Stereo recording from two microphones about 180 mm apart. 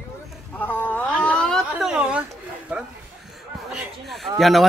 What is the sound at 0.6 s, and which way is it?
A woman's voice, 10° left (ahead or behind).